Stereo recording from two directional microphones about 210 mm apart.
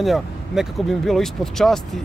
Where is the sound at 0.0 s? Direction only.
Centre (ahead or behind).